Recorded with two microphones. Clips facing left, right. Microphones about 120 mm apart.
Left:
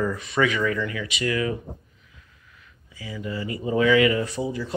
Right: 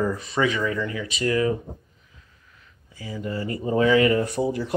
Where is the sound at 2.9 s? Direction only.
40° right (ahead or behind).